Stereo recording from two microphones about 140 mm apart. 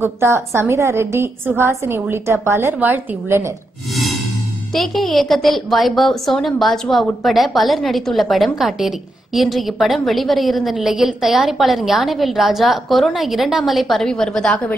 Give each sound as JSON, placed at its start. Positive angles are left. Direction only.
{"t": 0.0, "sound": "a woman's voice", "side_deg": -20}
{"t": 3.9, "sound": "a sound", "side_deg": 0}
{"t": 4.7, "sound": "a woman's voice", "side_deg": 0}